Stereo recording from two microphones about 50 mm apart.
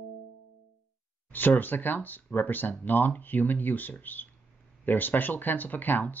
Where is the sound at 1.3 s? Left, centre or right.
Left.